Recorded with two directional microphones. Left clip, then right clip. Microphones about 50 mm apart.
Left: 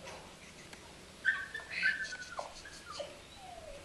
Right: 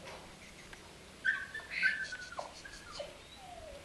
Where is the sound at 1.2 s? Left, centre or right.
Left.